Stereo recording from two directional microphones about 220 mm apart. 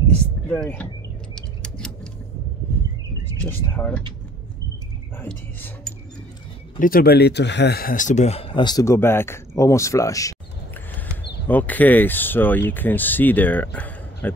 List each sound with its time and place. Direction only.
0.5 s speech: 5° left (ahead or behind)
1.3 s keys jangling: 5° left (ahead or behind)
3.3 s speech: 10° left (ahead or behind)
5.2 s speech: 10° left (ahead or behind)
6.8 s speech: 40° left (ahead or behind); by 10.3 s 15° left (ahead or behind)
11.4 s speech: 5° left (ahead or behind)